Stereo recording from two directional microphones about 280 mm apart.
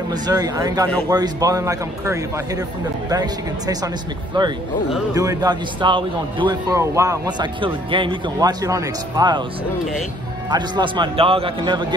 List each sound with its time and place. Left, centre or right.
0.1 s a man's voice: centre
10.5 s a man's voice: centre